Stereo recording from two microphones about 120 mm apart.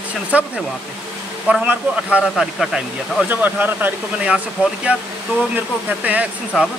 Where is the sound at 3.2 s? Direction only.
15° right (ahead or behind).